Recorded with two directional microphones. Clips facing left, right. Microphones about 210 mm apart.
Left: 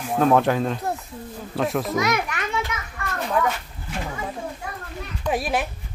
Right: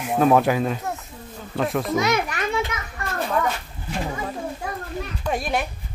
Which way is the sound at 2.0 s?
25° right (ahead or behind).